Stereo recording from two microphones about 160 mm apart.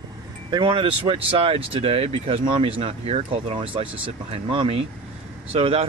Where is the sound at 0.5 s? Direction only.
30° right (ahead or behind).